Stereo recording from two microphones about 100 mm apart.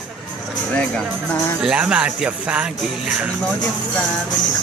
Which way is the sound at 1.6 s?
10° right (ahead or behind).